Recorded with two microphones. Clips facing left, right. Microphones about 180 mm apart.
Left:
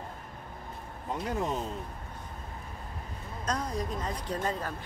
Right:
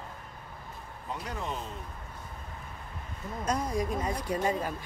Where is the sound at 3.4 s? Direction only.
10° right (ahead or behind).